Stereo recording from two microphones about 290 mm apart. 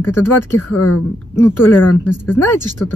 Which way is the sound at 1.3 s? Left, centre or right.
Centre.